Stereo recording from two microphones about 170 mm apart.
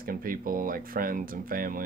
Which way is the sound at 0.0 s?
60° right (ahead or behind).